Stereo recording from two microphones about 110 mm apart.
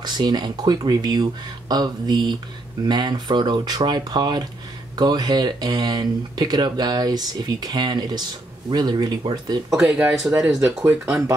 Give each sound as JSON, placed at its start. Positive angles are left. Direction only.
{"t": 0.0, "sound": "speech", "side_deg": -40}
{"t": 9.8, "sound": "speech", "side_deg": -10}